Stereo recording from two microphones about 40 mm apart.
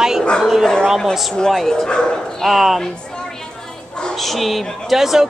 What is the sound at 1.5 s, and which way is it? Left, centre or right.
Speech, centre.